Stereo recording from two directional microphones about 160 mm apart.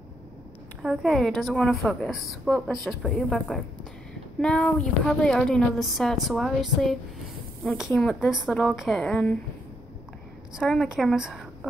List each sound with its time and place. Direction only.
0.8 s a woman's voice: centre (ahead or behind)
10.5 s a woman's voice: centre (ahead or behind)